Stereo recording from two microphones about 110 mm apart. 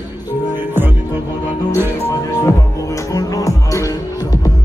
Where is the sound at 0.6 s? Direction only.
20° right (ahead or behind).